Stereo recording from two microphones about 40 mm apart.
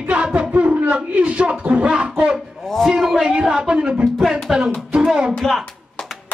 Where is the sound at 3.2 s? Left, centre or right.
Centre.